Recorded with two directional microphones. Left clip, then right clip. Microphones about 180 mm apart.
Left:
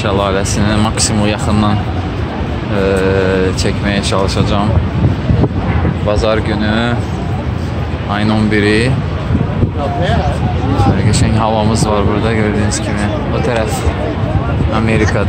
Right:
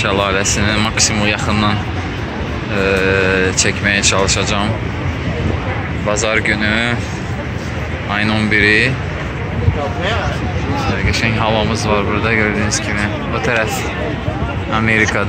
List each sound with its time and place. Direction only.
0.0 s speech: 10° left (ahead or behind)
2.8 s speech: 15° left (ahead or behind)
6.0 s speech: 15° left (ahead or behind)
8.1 s speech: 15° left (ahead or behind)
11.1 s speech: 30° left (ahead or behind)
12.3 s speech: 10° left (ahead or behind)
14.7 s speech: centre (ahead or behind)